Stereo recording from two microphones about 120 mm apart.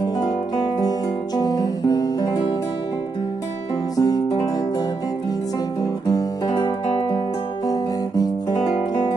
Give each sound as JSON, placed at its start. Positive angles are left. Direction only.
{"t": 0.0, "sound": "guitar", "side_deg": 35}
{"t": 3.9, "sound": "music", "side_deg": 30}
{"t": 5.8, "sound": "guitar", "side_deg": 35}
{"t": 7.6, "sound": "guitar", "side_deg": 30}